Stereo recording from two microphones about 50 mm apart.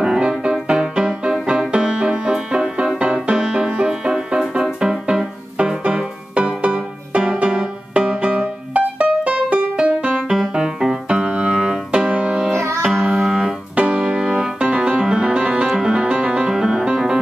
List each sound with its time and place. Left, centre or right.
0.0 s music: centre
10.1 s music: centre
12.5 s music: right
12.8 s music: centre
13.7 s music: right
15.6 s music: centre